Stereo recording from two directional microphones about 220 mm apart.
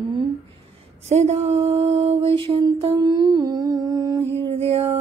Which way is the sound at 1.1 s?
30° right (ahead or behind).